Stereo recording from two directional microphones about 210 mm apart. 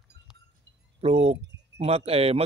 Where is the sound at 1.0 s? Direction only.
30° right (ahead or behind).